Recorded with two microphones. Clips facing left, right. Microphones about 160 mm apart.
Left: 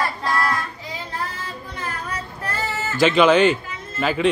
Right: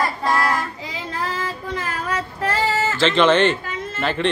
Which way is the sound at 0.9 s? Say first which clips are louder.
Right 3 dB; 90° right.